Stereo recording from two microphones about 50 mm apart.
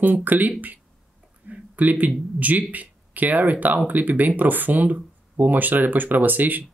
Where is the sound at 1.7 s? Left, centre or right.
Right.